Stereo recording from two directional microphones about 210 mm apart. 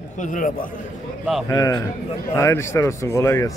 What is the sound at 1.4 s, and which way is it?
Speech, 15° left (ahead or behind).